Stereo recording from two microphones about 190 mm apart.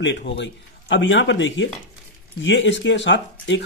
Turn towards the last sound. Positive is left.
turn(degrees=70)  # may be behind; listen again after turning